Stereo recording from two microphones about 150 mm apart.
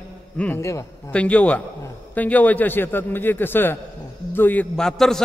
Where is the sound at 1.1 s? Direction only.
10° left (ahead or behind).